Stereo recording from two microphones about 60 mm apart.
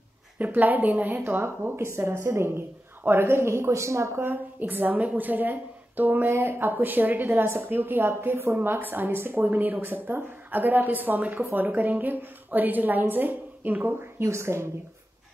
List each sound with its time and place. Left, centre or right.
0.4 s a woman's voice: right
1.9 s a woman's voice: right
4.2 s a woman's voice: right
14.2 s a woman's voice: right